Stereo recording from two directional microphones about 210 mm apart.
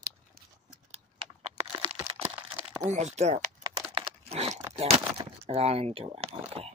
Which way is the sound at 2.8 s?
10° right (ahead or behind).